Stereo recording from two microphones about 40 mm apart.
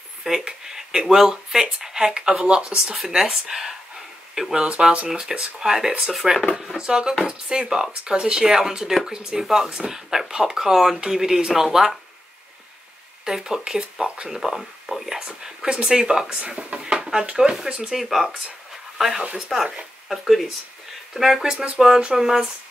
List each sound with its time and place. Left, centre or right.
0.2 s speech: centre
6.1 s speech: centre
6.8 s speech: centre
13.2 s speech: centre
15.0 s speech: centre
17.9 s speech: centre